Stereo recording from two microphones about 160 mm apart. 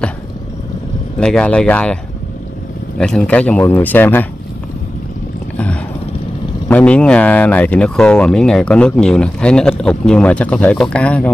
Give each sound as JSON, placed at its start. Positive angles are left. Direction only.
{"t": 1.2, "sound": "speech", "side_deg": 5}
{"t": 3.0, "sound": "speech", "side_deg": 5}
{"t": 6.7, "sound": "speech", "side_deg": 10}